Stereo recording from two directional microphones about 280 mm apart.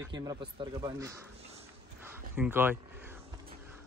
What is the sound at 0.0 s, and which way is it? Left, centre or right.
Speech, centre.